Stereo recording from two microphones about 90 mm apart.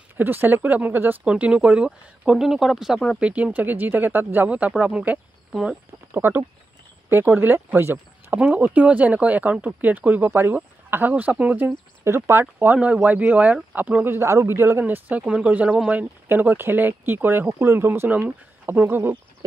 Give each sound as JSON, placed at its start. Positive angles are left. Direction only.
{"t": 0.2, "sound": "a man's voice", "side_deg": -25}
{"t": 6.1, "sound": "a man's voice", "side_deg": -25}
{"t": 12.0, "sound": "a man's voice", "side_deg": -30}
{"t": 14.1, "sound": "a man's voice", "side_deg": -30}